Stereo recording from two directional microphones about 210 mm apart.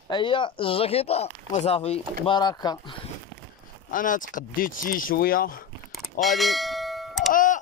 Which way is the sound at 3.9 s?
40° left (ahead or behind).